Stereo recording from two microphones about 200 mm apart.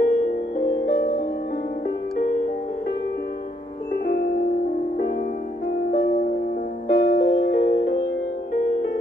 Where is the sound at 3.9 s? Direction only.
55° left (ahead or behind).